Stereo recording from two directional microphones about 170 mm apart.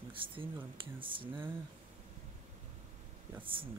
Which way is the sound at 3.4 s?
30° right (ahead or behind).